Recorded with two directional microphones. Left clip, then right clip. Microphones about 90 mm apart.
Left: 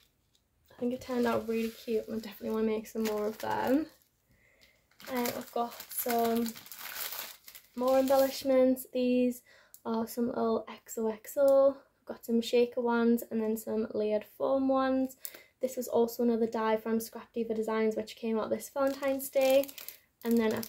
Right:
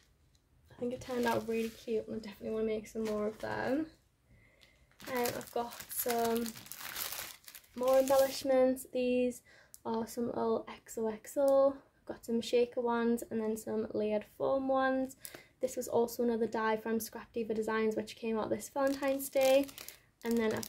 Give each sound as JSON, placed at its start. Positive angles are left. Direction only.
{"t": 0.7, "sound": "speech", "side_deg": -35}
{"t": 2.5, "sound": "speech", "side_deg": 30}
{"t": 5.2, "sound": "speech", "side_deg": -60}
{"t": 7.7, "sound": "speech", "side_deg": -75}
{"t": 8.3, "sound": "speech", "side_deg": -35}